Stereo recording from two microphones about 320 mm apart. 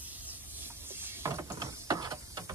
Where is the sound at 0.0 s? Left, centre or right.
Centre.